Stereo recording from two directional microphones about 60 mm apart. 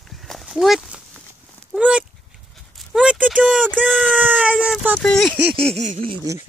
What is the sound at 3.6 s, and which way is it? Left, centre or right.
Speech, right.